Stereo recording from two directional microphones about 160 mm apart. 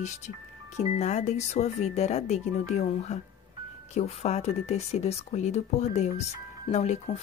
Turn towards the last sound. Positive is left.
turn(degrees=45)  # may be behind; listen again after turning